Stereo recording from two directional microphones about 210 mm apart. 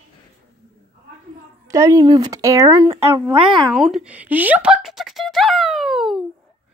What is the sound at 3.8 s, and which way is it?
Speech, centre (ahead or behind).